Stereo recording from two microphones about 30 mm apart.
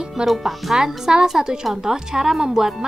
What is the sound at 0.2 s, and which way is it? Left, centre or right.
A woman's voice, right.